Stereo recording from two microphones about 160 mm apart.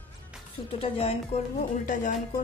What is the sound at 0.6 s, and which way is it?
Speech, 35° left (ahead or behind).